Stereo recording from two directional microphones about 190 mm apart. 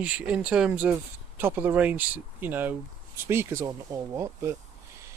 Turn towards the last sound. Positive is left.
turn(degrees=-15)  # may be behind; listen again after turning